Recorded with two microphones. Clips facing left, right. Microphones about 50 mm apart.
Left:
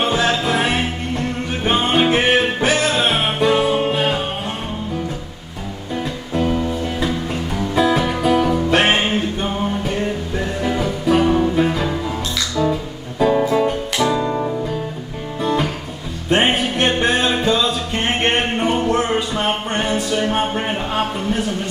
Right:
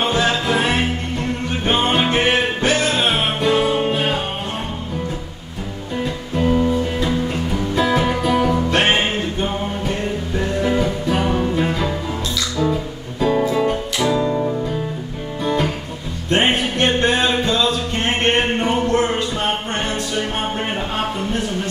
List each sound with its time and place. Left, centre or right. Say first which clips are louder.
0.0 s music: left 1 dB; centre
1.9 s music: left 3 dB; centre
6.3 s music: right 2 dB; centre
13.2 s music: left 2 dB; centre
16.3 s music: left 1 dB; centre
18.2 s a sound: right 1 dB; centre